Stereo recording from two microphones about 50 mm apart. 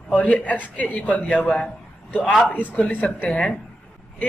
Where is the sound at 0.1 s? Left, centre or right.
Left.